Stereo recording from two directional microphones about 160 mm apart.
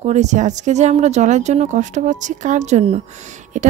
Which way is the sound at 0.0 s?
45° right (ahead or behind).